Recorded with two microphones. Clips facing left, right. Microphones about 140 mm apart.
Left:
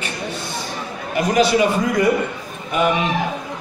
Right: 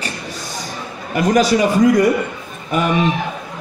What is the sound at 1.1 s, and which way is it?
Speech, 45° right (ahead or behind).